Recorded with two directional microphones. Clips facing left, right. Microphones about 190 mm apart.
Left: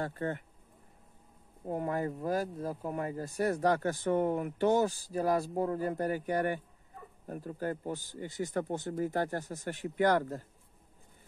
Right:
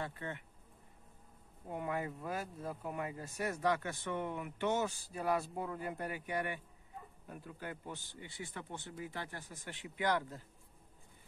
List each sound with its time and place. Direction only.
0.0 s speech: 45° left (ahead or behind)
1.7 s speech: 40° left (ahead or behind)